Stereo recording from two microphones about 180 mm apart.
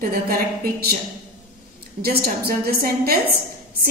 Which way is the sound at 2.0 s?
60° right (ahead or behind).